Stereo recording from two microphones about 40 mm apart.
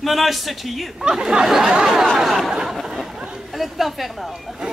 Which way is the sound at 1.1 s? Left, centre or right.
Centre.